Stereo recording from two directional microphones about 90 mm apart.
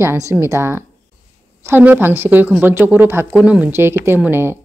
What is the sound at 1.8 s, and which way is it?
Speech, 25° right (ahead or behind).